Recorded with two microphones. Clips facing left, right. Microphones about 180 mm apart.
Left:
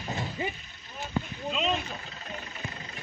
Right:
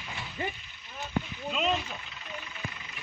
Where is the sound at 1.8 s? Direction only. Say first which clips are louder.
Left 2 dB; 40° left (ahead or behind).